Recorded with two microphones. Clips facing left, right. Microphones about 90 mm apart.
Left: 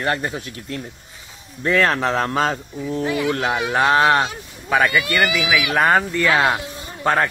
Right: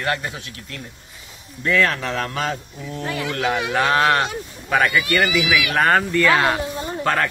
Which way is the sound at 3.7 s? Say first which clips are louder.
Left 3 dB; 25° left (ahead or behind).